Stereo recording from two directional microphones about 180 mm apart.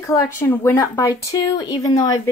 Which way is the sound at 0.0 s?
20° left (ahead or behind).